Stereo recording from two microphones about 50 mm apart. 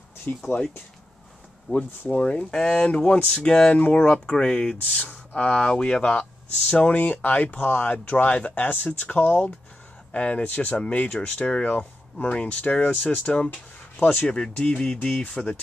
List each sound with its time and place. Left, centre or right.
0.3 s speech: left
1.7 s speech: left
2.0 s speech: left
4.8 s speech: left